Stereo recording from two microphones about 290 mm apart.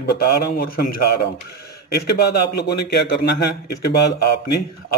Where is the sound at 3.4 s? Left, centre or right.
Left.